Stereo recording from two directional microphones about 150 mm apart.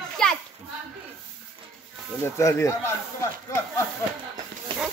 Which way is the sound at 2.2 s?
20° left (ahead or behind).